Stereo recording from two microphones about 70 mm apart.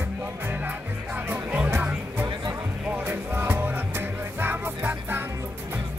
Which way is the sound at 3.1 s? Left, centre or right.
Right.